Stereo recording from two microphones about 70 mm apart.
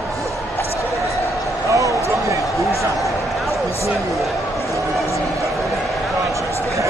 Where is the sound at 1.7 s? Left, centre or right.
Right.